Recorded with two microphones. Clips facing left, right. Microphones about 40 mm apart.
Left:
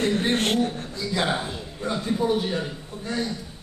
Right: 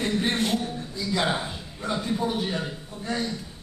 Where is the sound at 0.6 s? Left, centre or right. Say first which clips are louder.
Left 7 dB; left.